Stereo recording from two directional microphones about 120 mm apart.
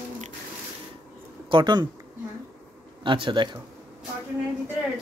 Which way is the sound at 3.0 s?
45° right (ahead or behind).